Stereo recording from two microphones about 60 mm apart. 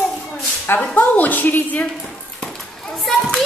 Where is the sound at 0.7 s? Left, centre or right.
Left.